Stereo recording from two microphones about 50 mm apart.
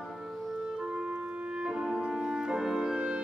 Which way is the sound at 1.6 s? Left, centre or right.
Centre.